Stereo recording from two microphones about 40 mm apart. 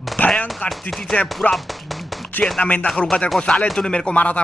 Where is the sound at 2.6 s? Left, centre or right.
Left.